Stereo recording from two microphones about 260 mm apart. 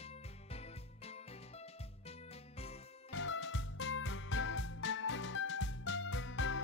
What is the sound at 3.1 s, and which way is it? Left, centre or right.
Music, left.